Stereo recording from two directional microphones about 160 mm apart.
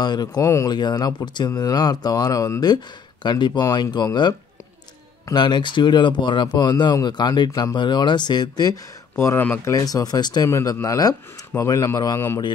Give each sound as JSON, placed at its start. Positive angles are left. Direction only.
{"t": 0.0, "sound": "speech", "side_deg": 25}
{"t": 9.1, "sound": "speech", "side_deg": 15}
{"t": 9.8, "sound": "speech", "side_deg": 25}